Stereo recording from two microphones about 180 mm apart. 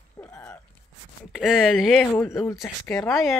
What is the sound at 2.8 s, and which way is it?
Speech, 5° left (ahead or behind).